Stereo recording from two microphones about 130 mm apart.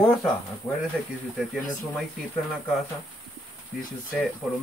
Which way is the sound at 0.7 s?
20° left (ahead or behind).